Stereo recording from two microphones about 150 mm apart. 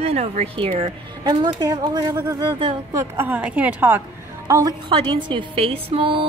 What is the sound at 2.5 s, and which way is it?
Speech, 35° right (ahead or behind).